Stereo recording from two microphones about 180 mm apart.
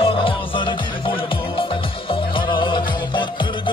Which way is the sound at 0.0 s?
30° left (ahead or behind).